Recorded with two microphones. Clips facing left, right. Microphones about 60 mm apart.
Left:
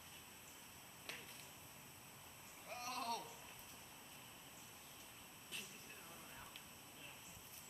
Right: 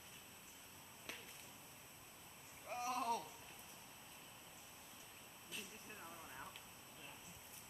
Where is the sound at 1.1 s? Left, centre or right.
Centre.